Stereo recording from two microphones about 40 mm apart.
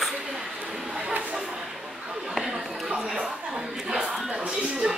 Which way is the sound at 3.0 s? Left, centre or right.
Centre.